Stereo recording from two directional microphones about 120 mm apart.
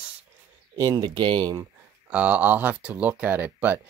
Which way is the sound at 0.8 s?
35° right (ahead or behind).